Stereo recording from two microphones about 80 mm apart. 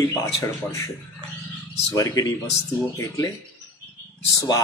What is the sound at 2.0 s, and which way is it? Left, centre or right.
Speech, left.